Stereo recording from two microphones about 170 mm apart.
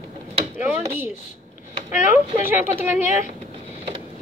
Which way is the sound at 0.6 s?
10° right (ahead or behind).